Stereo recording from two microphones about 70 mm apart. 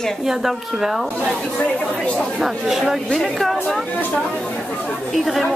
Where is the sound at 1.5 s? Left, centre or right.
Centre.